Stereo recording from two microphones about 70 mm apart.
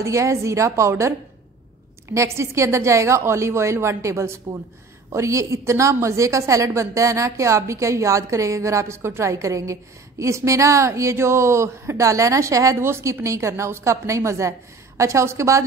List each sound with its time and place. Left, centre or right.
0.0 s a woman's voice: right